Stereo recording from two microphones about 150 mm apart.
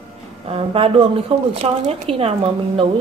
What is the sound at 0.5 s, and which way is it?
A woman's voice, 40° right (ahead or behind).